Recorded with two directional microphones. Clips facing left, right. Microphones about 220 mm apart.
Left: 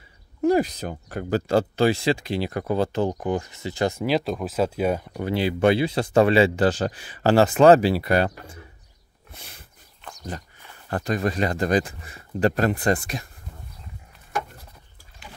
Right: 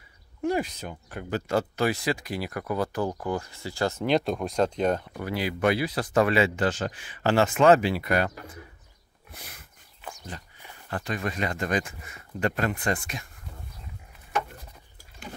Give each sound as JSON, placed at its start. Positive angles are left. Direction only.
{"t": 0.4, "sound": "speech", "side_deg": 40}
{"t": 4.0, "sound": "speech", "side_deg": 0}
{"t": 5.2, "sound": "speech", "side_deg": 30}
{"t": 10.1, "sound": "walk", "side_deg": 40}
{"t": 10.9, "sound": "speech", "side_deg": 40}